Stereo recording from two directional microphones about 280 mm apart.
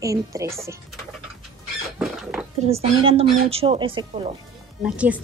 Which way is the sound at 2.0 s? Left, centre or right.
Centre.